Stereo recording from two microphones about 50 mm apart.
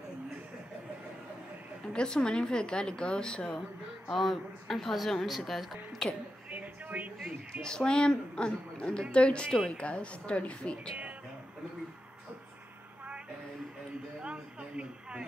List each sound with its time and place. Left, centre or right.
1.9 s a woman's voice: centre
4.1 s a woman's voice: centre
6.0 s speech: centre
6.5 s a sound: right
7.6 s a woman's voice: centre
14.2 s a sound: right